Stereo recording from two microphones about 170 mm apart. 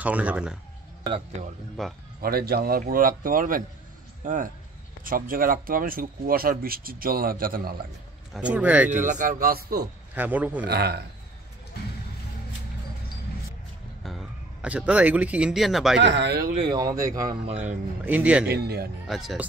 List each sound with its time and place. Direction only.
0.0 s speech: 10° right (ahead or behind)
1.4 s speech: 40° right (ahead or behind)
1.8 s speech: centre (ahead or behind)
2.2 s speech: 65° right (ahead or behind)
8.3 s speech: 5° right (ahead or behind)
8.9 s speech: 50° right (ahead or behind); by 9.8 s 65° right (ahead or behind)
10.1 s speech: 10° right (ahead or behind)
10.7 s speech: 70° right (ahead or behind)
14.6 s speech: 5° right (ahead or behind)
16.0 s speech: 90° right
16.5 s speech: 25° right (ahead or behind)
18.0 s speech: 10° right (ahead or behind)
18.5 s speech: 70° right (ahead or behind)
19.0 s speech: centre (ahead or behind)